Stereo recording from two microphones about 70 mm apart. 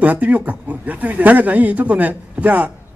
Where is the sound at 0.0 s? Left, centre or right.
Right.